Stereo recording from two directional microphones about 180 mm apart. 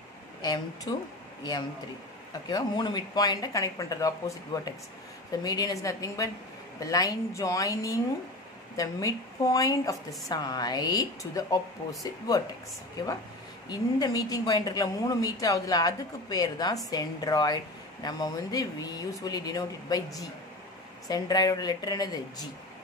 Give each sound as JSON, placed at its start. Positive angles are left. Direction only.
{"t": 0.4, "sound": "a woman's voice", "side_deg": 20}
{"t": 2.5, "sound": "a woman's voice", "side_deg": 25}
{"t": 13.7, "sound": "a woman's voice", "side_deg": 20}